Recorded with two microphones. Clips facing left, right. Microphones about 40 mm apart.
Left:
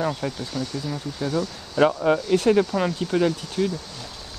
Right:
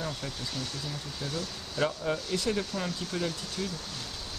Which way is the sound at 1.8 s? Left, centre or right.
Left.